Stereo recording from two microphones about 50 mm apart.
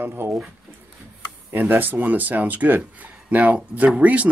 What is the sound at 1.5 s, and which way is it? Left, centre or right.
Speech, right.